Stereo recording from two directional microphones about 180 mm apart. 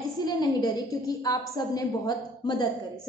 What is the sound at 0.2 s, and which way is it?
A woman's voice, 20° left (ahead or behind).